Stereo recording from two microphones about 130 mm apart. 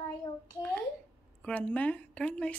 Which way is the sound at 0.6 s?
10° left (ahead or behind).